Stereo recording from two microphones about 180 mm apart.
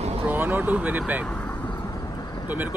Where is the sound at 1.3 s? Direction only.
10° left (ahead or behind).